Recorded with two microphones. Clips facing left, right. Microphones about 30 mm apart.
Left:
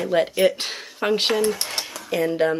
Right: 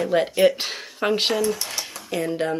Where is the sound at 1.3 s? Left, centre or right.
Left.